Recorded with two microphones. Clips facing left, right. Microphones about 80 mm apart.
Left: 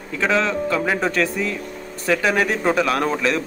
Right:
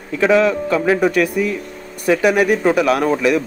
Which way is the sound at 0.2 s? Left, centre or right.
Centre.